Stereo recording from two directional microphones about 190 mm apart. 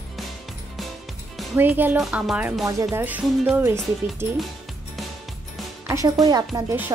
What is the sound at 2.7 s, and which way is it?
Speech, 15° right (ahead or behind).